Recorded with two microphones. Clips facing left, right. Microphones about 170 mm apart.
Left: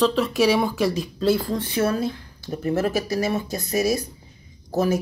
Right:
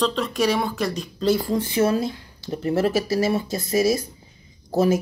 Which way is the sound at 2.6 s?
30° right (ahead or behind).